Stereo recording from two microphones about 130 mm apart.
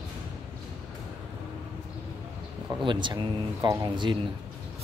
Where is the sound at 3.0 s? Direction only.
30° right (ahead or behind).